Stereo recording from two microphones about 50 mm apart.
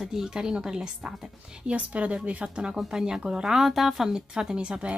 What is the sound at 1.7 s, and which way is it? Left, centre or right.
A woman's voice, right.